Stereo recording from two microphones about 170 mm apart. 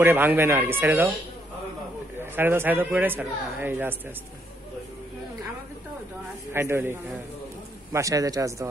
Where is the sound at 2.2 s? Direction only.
15° right (ahead or behind).